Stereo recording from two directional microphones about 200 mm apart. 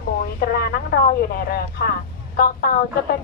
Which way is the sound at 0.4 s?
50° left (ahead or behind).